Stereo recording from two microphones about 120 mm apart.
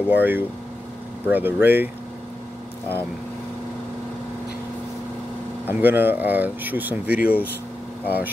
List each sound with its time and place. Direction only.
0.1 s speech: 15° right (ahead or behind)
5.7 s speech: 15° right (ahead or behind)